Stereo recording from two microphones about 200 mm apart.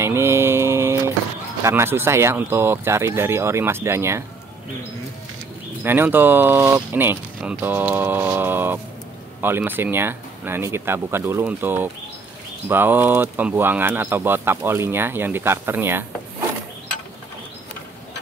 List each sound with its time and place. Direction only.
0.0 s mantra: 10° right (ahead or behind)
1.6 s speech: 15° right (ahead or behind)
5.9 s speech: 10° right (ahead or behind)